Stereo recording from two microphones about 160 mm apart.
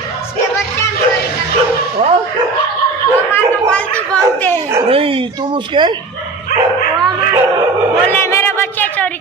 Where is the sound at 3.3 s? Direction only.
10° left (ahead or behind).